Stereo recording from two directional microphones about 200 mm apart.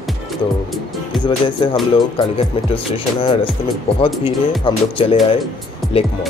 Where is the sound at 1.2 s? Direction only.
25° left (ahead or behind).